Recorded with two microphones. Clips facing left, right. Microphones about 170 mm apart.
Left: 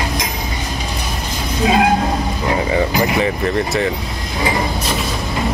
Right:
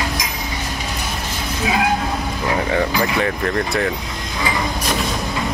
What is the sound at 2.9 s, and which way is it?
Speech, 20° left (ahead or behind).